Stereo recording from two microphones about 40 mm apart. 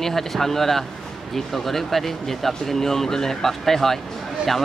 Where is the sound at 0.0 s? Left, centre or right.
Centre.